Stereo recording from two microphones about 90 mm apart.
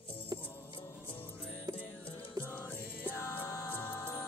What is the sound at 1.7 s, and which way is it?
Music, 50° right (ahead or behind).